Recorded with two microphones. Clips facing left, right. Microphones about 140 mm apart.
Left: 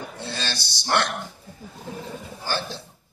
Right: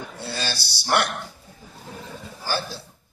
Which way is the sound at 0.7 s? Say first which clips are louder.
Right 1 dB; 10° right (ahead or behind).